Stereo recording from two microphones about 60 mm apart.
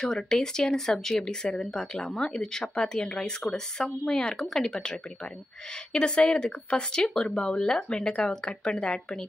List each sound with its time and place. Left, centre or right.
0.0 s speech: centre